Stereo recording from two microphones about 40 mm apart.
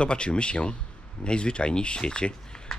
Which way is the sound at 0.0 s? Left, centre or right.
Left.